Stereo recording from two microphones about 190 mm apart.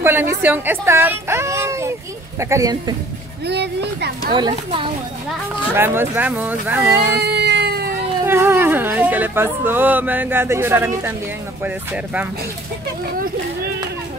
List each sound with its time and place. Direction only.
0.0 s a woman's voice: 10° right (ahead or behind)
3.4 s speech: 60° right (ahead or behind)
4.3 s speech: 25° right (ahead or behind)
5.8 s speech: 10° right (ahead or behind)
7.2 s cat: 60° right (ahead or behind)
8.3 s speech: 15° right (ahead or behind)